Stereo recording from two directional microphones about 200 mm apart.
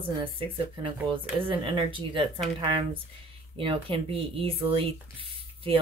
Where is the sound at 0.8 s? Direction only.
25° right (ahead or behind).